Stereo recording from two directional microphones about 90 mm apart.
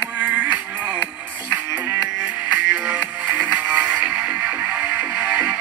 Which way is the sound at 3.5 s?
15° right (ahead or behind).